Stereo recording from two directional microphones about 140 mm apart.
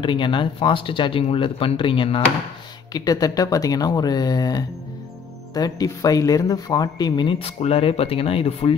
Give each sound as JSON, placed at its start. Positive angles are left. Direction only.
{"t": 0.0, "sound": "speech", "side_deg": 35}
{"t": 2.9, "sound": "speech", "side_deg": 25}
{"t": 7.3, "sound": "speech", "side_deg": 45}